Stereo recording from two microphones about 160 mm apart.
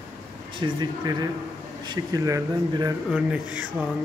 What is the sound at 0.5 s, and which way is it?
Speech, 30° right (ahead or behind).